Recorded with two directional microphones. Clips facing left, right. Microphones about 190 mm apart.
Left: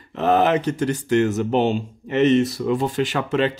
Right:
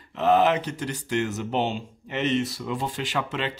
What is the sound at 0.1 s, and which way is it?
Speech, 50° left (ahead or behind).